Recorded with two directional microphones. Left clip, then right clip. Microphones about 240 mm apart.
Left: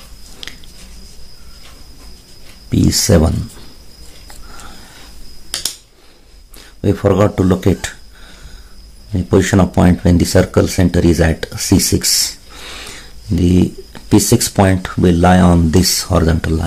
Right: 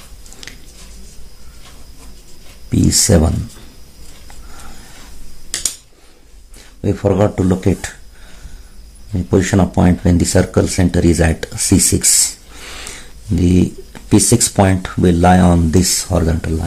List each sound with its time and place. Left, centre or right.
0.4 s a sound: centre
2.7 s speech: centre
6.8 s speech: centre
9.1 s speech: centre